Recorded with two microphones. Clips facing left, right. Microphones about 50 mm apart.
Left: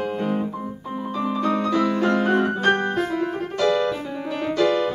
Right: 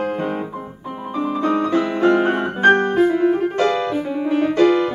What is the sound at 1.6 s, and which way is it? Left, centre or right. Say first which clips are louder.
Music: right 2 dB; right.